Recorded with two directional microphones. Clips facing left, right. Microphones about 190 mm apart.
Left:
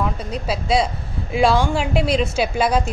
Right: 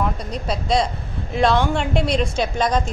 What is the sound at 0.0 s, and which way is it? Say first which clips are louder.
A woman's voice: even; 5° left (ahead or behind).